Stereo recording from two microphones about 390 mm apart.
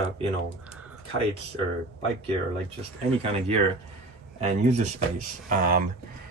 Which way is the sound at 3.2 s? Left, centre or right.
Centre.